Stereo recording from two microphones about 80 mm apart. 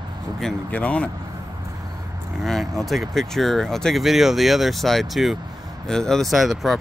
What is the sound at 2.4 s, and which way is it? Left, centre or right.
Speech, centre.